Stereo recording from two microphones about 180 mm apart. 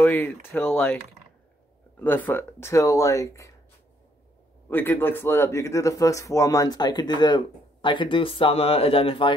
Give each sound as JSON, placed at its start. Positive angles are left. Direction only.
{"t": 0.0, "sound": "speech", "side_deg": 10}
{"t": 2.0, "sound": "speech", "side_deg": 10}
{"t": 4.6, "sound": "speech", "side_deg": 10}